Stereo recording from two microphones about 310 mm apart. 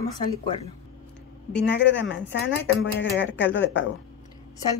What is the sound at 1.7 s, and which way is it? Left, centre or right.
Speech, left.